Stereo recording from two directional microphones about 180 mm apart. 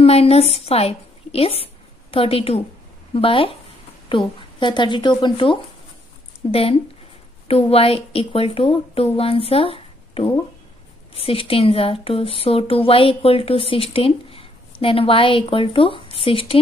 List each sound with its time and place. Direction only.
0.0 s a woman's voice: 35° left (ahead or behind)